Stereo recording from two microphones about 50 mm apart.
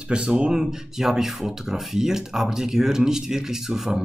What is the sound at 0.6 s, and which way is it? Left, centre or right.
Speech, centre.